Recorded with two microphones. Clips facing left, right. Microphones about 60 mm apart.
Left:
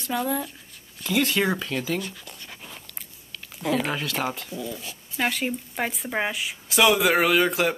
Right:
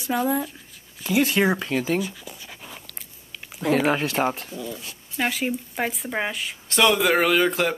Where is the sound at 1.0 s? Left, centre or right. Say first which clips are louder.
Right 3 dB; centre.